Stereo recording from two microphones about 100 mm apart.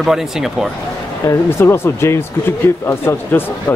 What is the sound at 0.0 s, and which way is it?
Speech, 5° right (ahead or behind).